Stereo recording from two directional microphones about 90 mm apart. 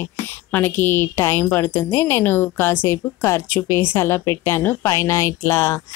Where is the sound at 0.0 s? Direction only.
25° left (ahead or behind).